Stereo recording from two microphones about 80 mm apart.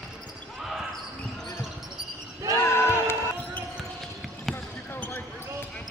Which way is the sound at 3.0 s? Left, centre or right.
Left.